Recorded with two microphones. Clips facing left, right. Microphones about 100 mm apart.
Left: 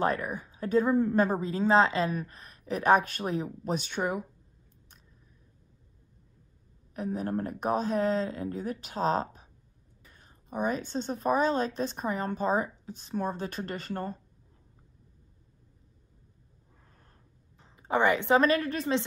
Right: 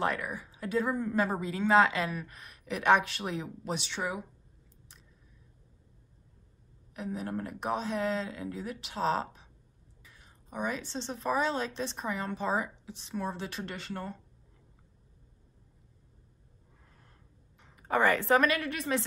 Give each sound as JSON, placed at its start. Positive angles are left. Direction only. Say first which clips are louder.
{"t": 0.0, "sound": "a woman's voice", "louder": "left 3 dB", "side_deg": 35}
{"t": 6.9, "sound": "a woman's voice", "louder": "left 4 dB", "side_deg": 40}
{"t": 17.6, "sound": "a woman's voice", "louder": "left 1 dB", "side_deg": 30}